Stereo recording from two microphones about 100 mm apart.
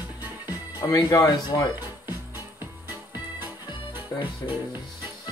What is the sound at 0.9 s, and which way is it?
Speech, 35° left (ahead or behind).